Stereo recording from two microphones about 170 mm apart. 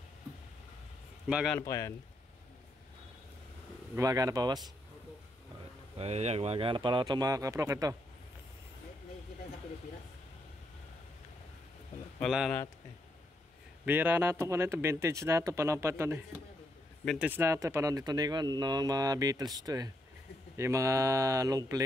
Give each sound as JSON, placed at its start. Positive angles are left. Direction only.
{"t": 1.2, "sound": "a man's voice", "side_deg": -5}
{"t": 1.6, "sound": "speech", "side_deg": 20}
{"t": 3.9, "sound": "speech", "side_deg": -20}
{"t": 5.9, "sound": "speech", "side_deg": -40}
{"t": 12.2, "sound": "speech", "side_deg": 0}
{"t": 13.8, "sound": "speech", "side_deg": -10}
{"t": 17.0, "sound": "a man's voice", "side_deg": 0}
{"t": 17.3, "sound": "speech", "side_deg": -15}